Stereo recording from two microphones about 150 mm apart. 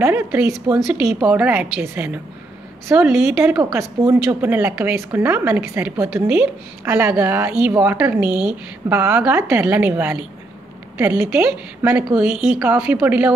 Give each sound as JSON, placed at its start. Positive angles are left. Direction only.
{"t": 0.0, "sound": "a woman's voice", "side_deg": -15}
{"t": 3.7, "sound": "a woman's voice", "side_deg": -15}